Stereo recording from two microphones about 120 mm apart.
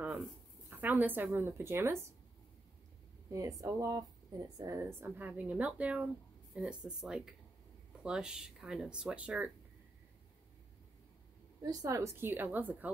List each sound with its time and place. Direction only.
0.7 s a woman's voice: 15° right (ahead or behind)
3.3 s a woman's voice: 30° right (ahead or behind); by 9.5 s 10° right (ahead or behind)
11.6 s a woman's voice: 30° right (ahead or behind)